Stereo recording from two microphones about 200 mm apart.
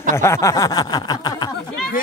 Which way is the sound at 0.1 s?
15° left (ahead or behind).